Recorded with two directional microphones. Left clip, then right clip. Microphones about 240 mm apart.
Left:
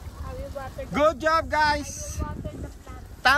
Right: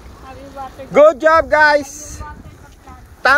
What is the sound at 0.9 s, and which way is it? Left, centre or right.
Speech, centre.